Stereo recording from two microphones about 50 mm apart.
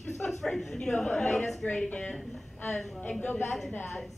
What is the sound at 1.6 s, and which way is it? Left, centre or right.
Speech, centre.